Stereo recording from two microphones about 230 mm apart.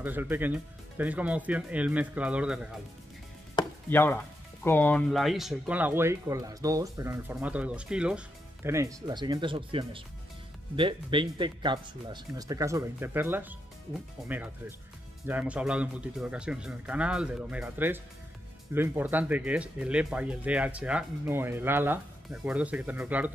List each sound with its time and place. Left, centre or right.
0.0 s speech: centre
3.5 s chopping: centre
4.6 s speech: centre